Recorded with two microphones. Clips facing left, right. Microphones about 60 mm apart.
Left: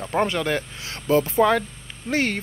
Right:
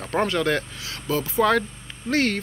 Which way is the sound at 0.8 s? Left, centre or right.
Left.